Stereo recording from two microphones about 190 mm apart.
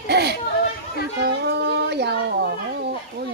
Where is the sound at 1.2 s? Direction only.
60° right (ahead or behind).